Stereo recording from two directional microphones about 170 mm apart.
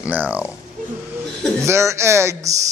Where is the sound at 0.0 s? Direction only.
10° right (ahead or behind).